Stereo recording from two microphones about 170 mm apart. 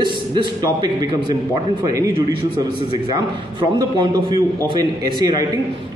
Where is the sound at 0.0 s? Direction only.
30° right (ahead or behind).